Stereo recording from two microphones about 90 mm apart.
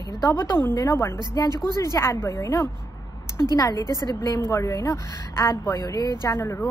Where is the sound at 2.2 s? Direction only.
35° left (ahead or behind).